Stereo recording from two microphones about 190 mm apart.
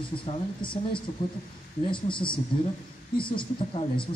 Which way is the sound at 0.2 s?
25° left (ahead or behind).